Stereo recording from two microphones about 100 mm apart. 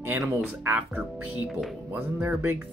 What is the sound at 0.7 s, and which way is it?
Speech, 20° right (ahead or behind).